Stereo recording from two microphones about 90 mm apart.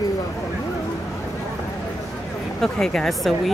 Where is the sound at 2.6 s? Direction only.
5° left (ahead or behind).